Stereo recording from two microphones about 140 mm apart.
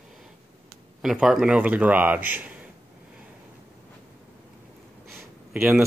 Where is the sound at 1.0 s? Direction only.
5° right (ahead or behind).